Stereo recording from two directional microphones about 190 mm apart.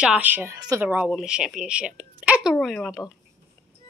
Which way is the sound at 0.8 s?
5° right (ahead or behind).